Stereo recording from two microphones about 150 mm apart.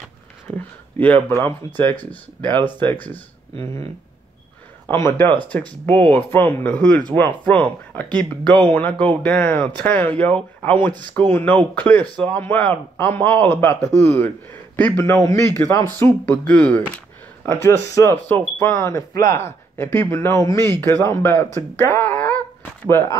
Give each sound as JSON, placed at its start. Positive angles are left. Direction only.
{"t": 0.9, "sound": "speech", "side_deg": 10}
{"t": 4.8, "sound": "speech", "side_deg": 15}
{"t": 16.3, "sound": "speech", "side_deg": 10}
{"t": 21.5, "sound": "a sound", "side_deg": 15}